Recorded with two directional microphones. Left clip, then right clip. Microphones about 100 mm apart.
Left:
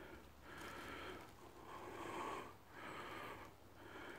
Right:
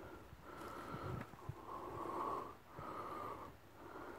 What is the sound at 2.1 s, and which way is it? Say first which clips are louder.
Snort: right 5 dB; 25° left (ahead or behind).